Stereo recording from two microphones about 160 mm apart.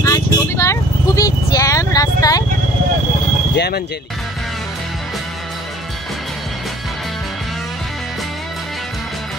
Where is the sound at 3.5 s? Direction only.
90° left.